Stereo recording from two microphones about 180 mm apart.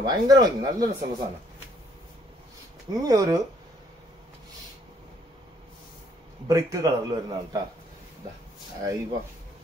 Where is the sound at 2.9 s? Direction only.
20° right (ahead or behind).